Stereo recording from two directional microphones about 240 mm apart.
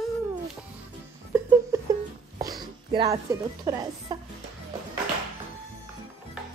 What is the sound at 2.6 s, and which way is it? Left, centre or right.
Speech, centre.